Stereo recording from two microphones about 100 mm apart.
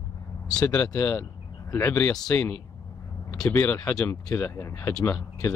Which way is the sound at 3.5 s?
20° left (ahead or behind).